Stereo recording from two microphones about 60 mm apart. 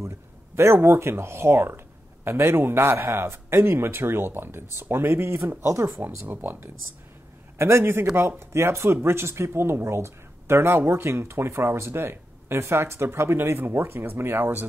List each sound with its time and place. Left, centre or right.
0.6 s speech: right
6.2 s speech: right
7.5 s speech: right